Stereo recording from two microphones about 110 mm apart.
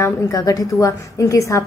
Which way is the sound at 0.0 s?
30° left (ahead or behind).